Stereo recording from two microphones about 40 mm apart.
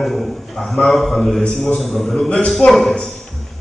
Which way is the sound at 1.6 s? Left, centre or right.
Centre.